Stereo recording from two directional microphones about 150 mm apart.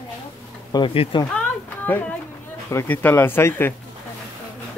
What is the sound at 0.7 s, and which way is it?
Speech, 35° left (ahead or behind).